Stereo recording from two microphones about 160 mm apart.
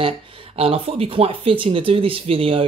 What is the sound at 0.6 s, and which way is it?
Speech, 35° right (ahead or behind).